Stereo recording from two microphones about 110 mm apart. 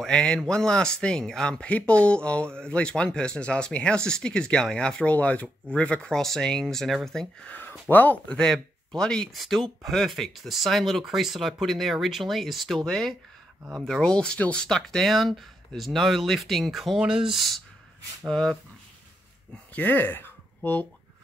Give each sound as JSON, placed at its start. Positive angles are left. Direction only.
{"t": 0.0, "sound": "speech", "side_deg": 10}
{"t": 7.9, "sound": "speech", "side_deg": 15}
{"t": 19.7, "sound": "speech", "side_deg": 15}